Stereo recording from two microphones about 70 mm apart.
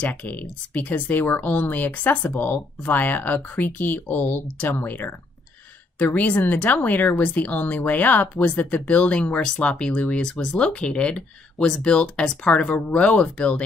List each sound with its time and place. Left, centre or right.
0.0 s speech: left